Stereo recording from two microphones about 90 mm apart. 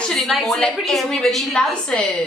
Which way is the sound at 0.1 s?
Centre (ahead or behind).